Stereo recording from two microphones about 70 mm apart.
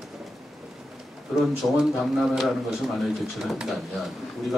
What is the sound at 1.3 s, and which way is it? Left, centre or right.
Speech, centre.